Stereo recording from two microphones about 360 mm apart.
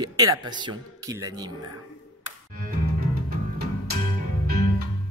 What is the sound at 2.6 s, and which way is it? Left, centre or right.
Music, right.